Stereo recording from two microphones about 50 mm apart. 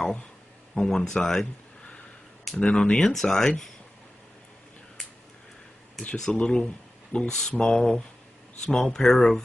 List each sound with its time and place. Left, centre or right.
0.7 s speech: centre
2.5 s speech: centre
6.1 s speech: centre